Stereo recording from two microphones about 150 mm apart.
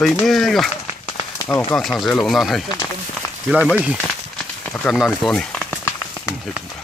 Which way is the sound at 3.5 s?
10° right (ahead or behind).